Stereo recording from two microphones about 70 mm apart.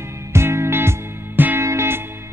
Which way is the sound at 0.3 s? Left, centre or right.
Right.